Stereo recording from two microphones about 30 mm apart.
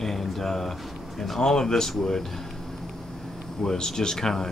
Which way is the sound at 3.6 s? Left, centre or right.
Centre.